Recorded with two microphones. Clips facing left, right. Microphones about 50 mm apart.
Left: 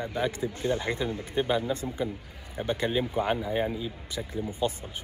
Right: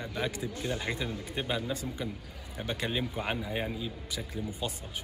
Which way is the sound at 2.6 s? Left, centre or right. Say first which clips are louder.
Left 5 dB; centre.